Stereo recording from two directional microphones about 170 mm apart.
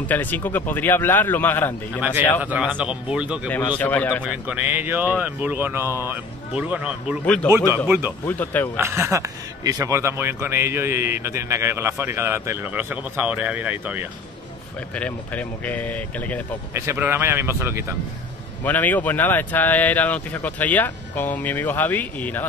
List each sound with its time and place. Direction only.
0.0 s speech: 10° left (ahead or behind)
2.0 s speech: 10° right (ahead or behind)
3.7 s speech: 10° left (ahead or behind)
4.2 s speech: 10° right (ahead or behind)
8.3 s speech: 10° left (ahead or behind)
8.7 s speech: 15° right (ahead or behind)
15.0 s speech: 10° left (ahead or behind)
16.7 s speech: 15° right (ahead or behind)
18.6 s speech: 10° left (ahead or behind)